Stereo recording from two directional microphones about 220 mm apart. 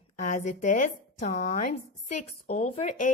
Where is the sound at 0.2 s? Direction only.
35° left (ahead or behind).